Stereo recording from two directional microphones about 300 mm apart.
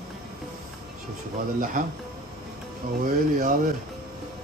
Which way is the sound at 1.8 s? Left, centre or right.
Right.